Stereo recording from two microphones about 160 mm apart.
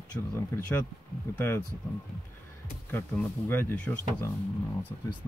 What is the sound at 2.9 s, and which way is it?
Speech, 10° left (ahead or behind).